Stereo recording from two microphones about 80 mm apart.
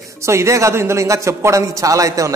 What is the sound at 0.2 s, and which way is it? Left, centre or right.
A man's voice, right.